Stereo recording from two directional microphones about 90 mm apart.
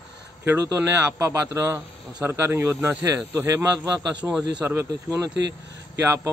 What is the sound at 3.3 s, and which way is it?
Speech, 30° right (ahead or behind).